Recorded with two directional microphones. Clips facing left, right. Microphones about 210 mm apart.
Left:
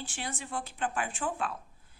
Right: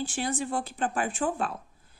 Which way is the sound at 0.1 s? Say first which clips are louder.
Right 8 dB; 40° right (ahead or behind).